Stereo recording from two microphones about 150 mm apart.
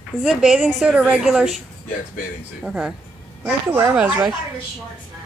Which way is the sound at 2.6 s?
5° right (ahead or behind).